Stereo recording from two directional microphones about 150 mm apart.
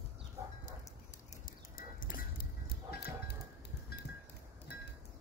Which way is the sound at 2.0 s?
75° left (ahead or behind).